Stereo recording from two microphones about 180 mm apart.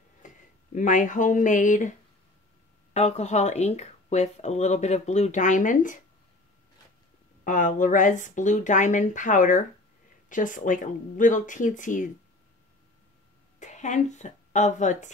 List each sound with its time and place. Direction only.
0.2 s a sound: 45° left (ahead or behind)
0.7 s speech: 45° left (ahead or behind)
7.4 s speech: 45° left (ahead or behind)
13.6 s a woman's voice: 40° left (ahead or behind)